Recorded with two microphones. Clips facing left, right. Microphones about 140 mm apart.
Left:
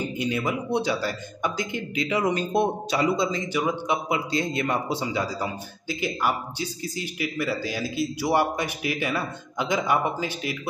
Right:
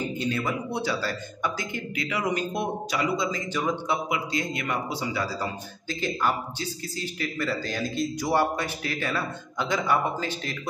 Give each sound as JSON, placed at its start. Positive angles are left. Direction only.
{"t": 0.2, "sound": "a man's voice", "side_deg": 15}
{"t": 3.5, "sound": "a man's voice", "side_deg": 15}
{"t": 4.1, "sound": "a man's voice", "side_deg": 30}